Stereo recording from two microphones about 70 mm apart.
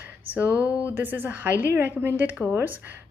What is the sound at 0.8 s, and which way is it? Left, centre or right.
Speech, right.